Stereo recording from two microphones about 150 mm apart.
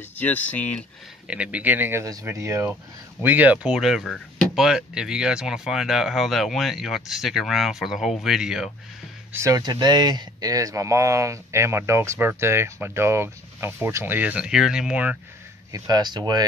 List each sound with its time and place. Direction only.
0.1 s speech: 10° left (ahead or behind)
1.2 s speech: 10° right (ahead or behind)
9.3 s speech: 20° right (ahead or behind)
15.7 s speech: 25° right (ahead or behind)